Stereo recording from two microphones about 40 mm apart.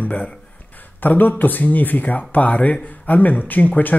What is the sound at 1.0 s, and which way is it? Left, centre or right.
Speech, left.